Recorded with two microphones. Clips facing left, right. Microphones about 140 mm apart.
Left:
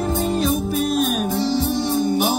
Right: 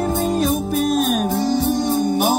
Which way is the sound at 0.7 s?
Centre (ahead or behind).